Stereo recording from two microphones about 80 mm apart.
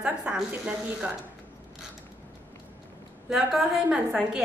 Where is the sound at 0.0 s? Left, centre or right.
Centre.